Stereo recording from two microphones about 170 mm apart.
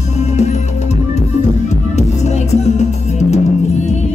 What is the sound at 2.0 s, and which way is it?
Music, 40° left (ahead or behind).